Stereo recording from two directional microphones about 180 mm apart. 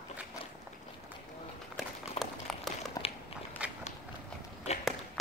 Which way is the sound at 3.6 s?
5° right (ahead or behind).